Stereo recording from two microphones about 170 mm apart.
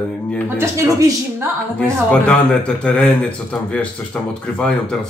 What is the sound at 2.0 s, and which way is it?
A man's voice, 5° left (ahead or behind).